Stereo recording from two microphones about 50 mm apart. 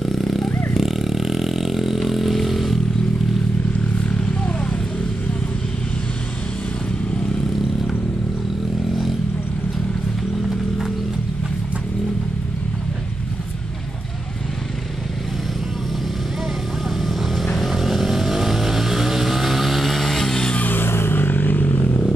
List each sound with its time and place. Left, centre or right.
0.0 s vehicle: centre
17.6 s vehicle: centre
20.7 s music: left